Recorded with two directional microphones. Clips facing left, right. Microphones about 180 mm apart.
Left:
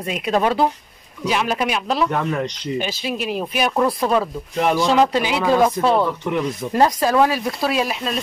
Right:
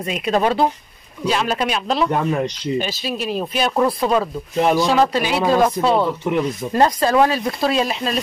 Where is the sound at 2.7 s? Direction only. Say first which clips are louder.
Left 1 dB; 15° left (ahead or behind).